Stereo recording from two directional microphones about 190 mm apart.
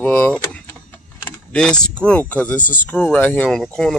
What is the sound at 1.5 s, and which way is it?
Speech, 5° left (ahead or behind).